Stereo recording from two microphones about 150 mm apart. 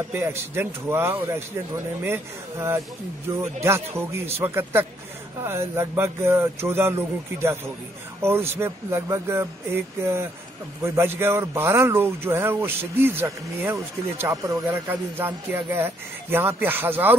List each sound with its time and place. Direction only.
0.1 s speech: 15° right (ahead or behind)